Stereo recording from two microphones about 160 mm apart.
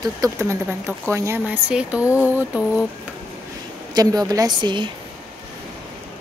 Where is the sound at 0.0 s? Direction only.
20° right (ahead or behind).